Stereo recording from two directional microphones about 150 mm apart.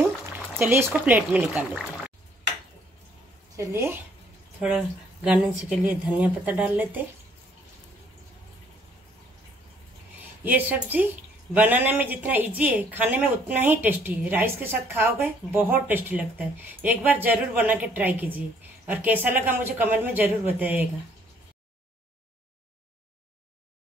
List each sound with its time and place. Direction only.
0.6 s speech: 15° right (ahead or behind)
3.5 s speech: 20° right (ahead or behind)
10.1 s a woman's voice: 10° right (ahead or behind)